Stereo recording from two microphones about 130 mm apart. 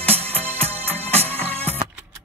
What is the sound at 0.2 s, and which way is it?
Music, 50° right (ahead or behind).